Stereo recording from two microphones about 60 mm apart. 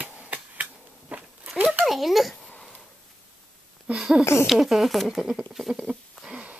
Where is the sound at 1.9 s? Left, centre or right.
Centre.